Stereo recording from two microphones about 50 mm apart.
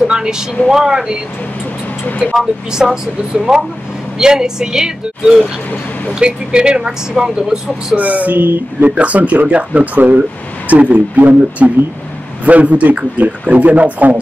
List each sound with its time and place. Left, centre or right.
0.0 s a sound: centre
0.7 s speech: centre
2.3 s speech: centre
7.9 s speech: right